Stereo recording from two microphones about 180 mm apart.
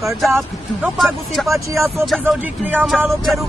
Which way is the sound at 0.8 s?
Centre (ahead or behind).